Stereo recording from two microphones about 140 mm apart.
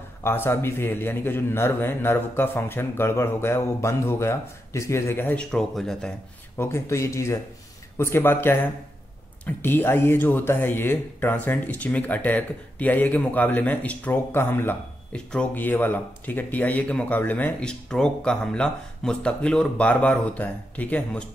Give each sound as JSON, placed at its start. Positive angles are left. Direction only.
{"t": 0.2, "sound": "speech", "side_deg": 15}
{"t": 6.6, "sound": "speech", "side_deg": 20}
{"t": 9.6, "sound": "speech", "side_deg": 15}